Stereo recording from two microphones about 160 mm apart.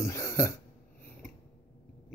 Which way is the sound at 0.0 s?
20° left (ahead or behind).